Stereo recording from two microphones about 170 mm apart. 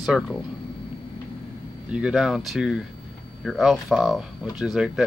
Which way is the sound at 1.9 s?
5° right (ahead or behind).